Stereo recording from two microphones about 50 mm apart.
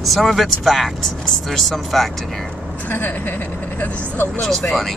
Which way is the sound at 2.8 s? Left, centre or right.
Left.